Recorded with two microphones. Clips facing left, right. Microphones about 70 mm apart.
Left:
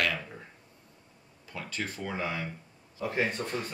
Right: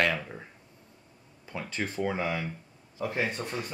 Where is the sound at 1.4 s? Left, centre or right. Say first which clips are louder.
Right 3 dB; right.